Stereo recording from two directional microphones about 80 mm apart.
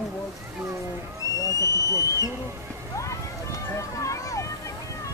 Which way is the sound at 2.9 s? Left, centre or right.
Left.